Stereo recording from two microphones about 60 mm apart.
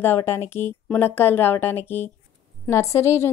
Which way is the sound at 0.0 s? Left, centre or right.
Left.